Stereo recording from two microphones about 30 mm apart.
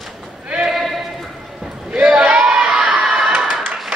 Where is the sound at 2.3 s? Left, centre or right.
Right.